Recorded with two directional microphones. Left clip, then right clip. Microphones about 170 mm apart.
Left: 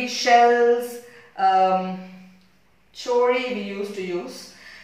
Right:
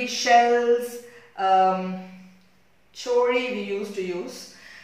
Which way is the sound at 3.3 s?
10° right (ahead or behind).